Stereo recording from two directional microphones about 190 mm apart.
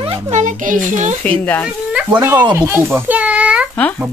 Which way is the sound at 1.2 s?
10° left (ahead or behind).